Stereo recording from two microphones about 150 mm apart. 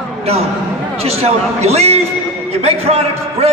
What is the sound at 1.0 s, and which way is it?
A man's voice, 45° right (ahead or behind).